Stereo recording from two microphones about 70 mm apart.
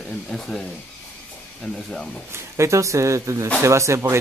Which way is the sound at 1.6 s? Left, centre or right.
Centre.